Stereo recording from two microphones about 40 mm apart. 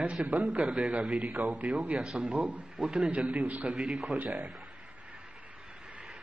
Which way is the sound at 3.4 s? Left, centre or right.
Right.